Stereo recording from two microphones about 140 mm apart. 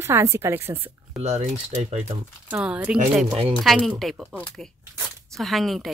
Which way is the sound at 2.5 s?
10° right (ahead or behind).